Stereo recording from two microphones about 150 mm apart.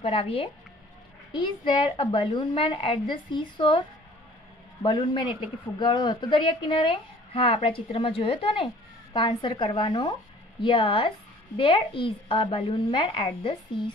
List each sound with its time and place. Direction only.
0.0 s a woman's voice: 35° left (ahead or behind)
4.8 s a woman's voice: 30° left (ahead or behind)